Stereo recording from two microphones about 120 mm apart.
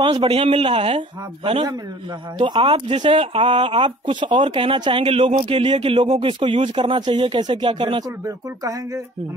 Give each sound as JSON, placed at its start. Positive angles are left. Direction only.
{"t": 0.0, "sound": "speech", "side_deg": -45}
{"t": 2.3, "sound": "speech", "side_deg": -40}